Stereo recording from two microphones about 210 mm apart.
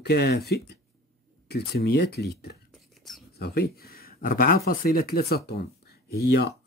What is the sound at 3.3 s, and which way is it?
Speech, 50° left (ahead or behind).